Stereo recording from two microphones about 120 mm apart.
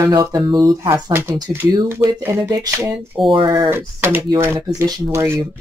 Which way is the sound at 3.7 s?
20° right (ahead or behind).